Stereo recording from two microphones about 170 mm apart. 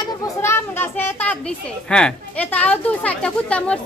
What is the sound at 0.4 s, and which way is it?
A child's voice, 15° left (ahead or behind).